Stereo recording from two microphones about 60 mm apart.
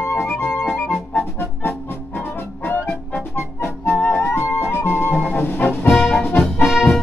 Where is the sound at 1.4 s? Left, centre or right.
Left.